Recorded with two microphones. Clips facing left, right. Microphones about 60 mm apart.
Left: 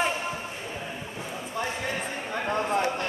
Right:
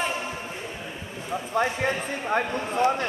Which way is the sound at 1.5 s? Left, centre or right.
Right.